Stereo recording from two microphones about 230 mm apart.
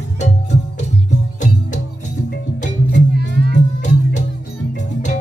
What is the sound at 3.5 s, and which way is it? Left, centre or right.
Music, left.